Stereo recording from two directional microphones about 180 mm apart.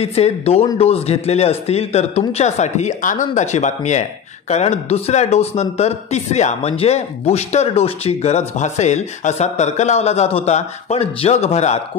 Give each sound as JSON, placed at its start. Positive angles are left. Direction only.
{"t": 0.0, "sound": "speech", "side_deg": 35}